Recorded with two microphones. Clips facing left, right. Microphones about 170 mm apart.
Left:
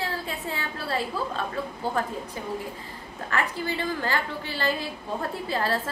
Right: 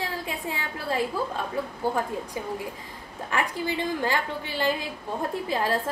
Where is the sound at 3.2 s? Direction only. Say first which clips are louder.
Right 1 dB; 15° right (ahead or behind).